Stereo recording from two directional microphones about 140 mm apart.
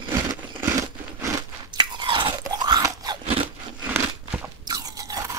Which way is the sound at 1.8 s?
30° right (ahead or behind).